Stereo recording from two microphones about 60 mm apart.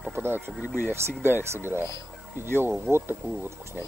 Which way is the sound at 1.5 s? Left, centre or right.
Right.